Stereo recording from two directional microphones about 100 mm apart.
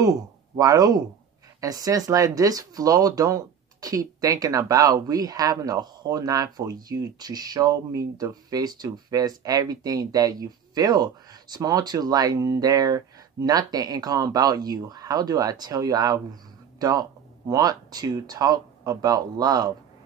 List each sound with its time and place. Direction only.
0.0 s speech: 35° right (ahead or behind)